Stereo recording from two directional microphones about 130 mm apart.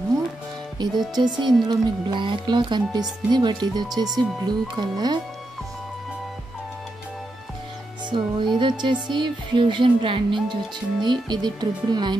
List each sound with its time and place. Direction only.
0.8 s speech: 35° right (ahead or behind)
8.1 s speech: 35° right (ahead or behind)